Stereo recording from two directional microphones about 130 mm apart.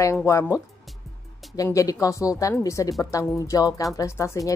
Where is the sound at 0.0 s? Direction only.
25° left (ahead or behind).